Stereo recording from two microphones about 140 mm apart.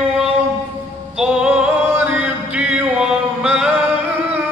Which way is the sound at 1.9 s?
10° right (ahead or behind).